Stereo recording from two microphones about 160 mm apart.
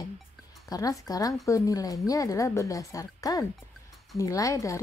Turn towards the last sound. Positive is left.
turn(degrees=20)  # may be behind; listen again after turning